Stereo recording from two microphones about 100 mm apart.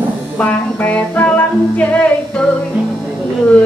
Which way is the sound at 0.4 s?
15° left (ahead or behind).